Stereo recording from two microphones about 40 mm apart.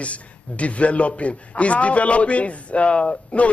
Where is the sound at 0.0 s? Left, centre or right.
Left.